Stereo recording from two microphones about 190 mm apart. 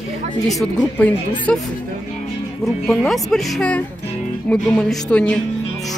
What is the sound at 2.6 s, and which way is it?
Speech, centre (ahead or behind).